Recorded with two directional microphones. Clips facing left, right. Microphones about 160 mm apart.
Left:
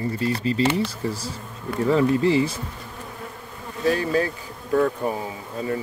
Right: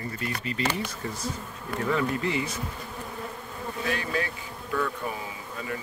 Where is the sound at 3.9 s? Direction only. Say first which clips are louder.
Left 10 dB; 35° left (ahead or behind).